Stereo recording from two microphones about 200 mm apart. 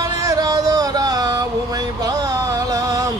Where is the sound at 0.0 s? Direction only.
20° right (ahead or behind).